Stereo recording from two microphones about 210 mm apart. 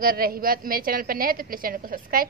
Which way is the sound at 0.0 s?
45° right (ahead or behind).